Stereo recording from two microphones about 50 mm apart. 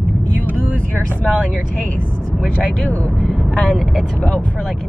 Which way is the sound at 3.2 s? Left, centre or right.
Centre.